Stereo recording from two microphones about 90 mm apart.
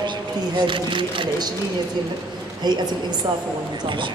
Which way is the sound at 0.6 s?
65° right (ahead or behind).